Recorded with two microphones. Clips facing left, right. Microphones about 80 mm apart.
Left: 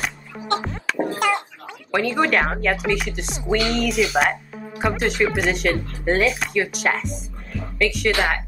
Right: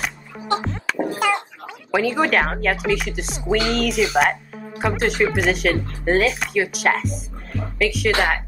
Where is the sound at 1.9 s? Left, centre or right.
Centre.